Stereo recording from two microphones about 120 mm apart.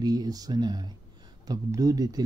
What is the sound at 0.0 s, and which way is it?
Speech, 35° right (ahead or behind).